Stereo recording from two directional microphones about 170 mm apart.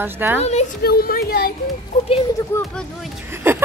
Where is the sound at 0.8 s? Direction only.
65° left (ahead or behind).